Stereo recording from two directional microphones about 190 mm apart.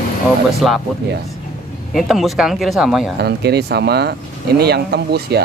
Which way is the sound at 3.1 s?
60° right (ahead or behind).